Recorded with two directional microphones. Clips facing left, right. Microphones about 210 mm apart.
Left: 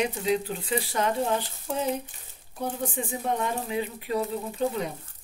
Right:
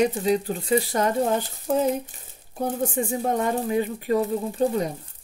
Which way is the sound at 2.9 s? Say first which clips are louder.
Right 5 dB; 45° right (ahead or behind).